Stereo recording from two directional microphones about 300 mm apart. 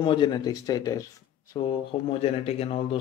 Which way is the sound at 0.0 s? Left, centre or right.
Centre.